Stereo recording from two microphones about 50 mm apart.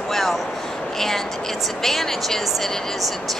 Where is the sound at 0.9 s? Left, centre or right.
Centre.